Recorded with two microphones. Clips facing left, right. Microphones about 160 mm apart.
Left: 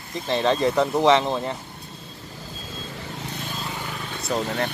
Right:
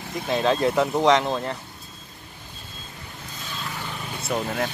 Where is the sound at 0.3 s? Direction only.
Centre (ahead or behind).